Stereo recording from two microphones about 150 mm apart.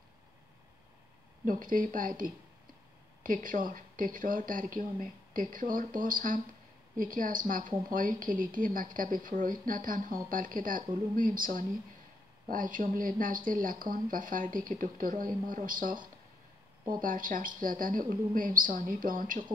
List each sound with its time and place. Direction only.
1.4 s a woman's voice: 65° right (ahead or behind)
17.0 s a woman's voice: 65° right (ahead or behind)